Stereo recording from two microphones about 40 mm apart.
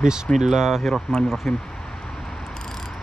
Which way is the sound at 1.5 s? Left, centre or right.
Centre.